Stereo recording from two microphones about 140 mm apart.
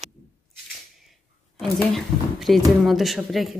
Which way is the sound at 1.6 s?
5° left (ahead or behind).